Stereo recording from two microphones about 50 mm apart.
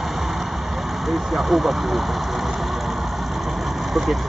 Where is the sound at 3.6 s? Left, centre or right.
Centre.